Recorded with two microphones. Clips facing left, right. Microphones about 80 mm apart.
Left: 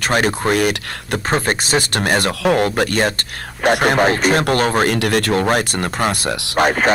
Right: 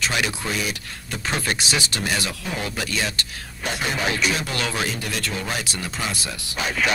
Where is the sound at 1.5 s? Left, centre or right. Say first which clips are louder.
Left 7 dB; left.